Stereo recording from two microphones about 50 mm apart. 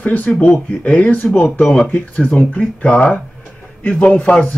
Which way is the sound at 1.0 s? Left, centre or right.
Left.